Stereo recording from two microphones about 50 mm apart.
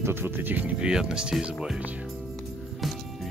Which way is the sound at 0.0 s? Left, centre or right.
Right.